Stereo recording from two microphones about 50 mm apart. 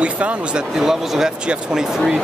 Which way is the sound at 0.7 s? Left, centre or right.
Centre.